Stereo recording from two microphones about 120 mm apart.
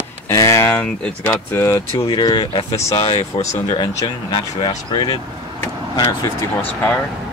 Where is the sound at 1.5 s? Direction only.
25° left (ahead or behind).